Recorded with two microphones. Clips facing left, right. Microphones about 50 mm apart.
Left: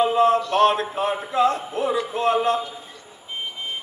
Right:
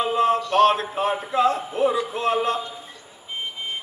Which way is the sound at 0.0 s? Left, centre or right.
Centre.